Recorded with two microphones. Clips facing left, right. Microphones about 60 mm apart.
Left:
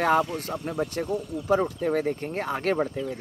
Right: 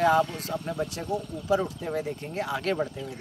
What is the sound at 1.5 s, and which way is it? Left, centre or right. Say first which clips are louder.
Speech: left 3 dB; left.